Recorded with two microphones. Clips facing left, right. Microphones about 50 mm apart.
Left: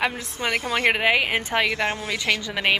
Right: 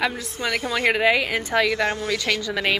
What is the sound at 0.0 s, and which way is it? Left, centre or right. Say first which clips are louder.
A woman's voice: even; left.